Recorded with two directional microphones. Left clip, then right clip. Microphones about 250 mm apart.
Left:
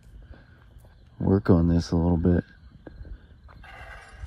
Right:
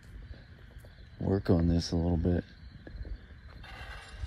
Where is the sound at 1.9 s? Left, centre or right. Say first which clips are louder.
Left 7 dB; left.